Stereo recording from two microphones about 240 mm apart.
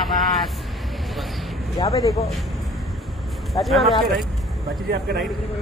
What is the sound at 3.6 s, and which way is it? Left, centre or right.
Speech, centre.